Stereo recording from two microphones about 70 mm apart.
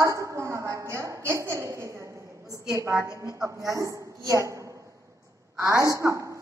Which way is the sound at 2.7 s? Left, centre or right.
Right.